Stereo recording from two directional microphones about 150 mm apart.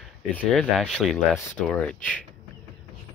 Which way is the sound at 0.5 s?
Centre (ahead or behind).